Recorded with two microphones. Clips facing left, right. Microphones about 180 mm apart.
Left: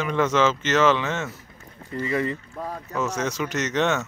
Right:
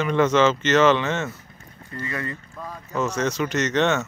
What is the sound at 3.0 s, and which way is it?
Speech, 5° left (ahead or behind).